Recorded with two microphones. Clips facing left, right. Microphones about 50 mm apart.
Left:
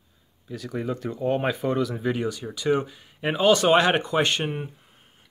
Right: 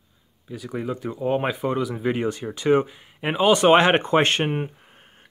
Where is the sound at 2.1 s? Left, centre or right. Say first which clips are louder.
Right 3 dB; right.